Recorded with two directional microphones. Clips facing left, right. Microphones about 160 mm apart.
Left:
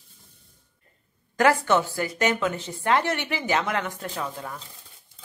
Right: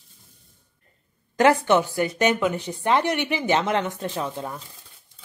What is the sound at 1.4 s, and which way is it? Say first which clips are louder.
A woman's voice: right 3 dB; 20° right (ahead or behind).